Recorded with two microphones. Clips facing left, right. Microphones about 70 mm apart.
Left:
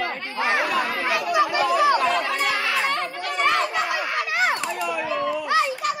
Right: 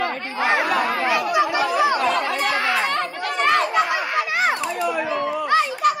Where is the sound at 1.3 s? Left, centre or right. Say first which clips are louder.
Right 1 dB; centre.